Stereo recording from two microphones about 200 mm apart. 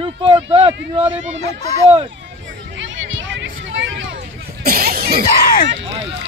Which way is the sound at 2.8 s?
65° right (ahead or behind).